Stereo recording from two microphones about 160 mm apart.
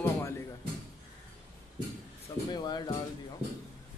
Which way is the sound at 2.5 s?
25° left (ahead or behind).